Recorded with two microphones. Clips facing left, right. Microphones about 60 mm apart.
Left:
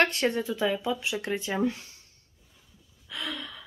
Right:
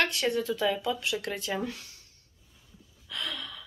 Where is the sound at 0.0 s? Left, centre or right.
Left.